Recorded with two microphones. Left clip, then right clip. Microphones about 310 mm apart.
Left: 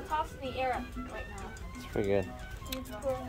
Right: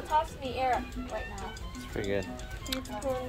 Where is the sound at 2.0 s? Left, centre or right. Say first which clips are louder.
Left 2 dB; left.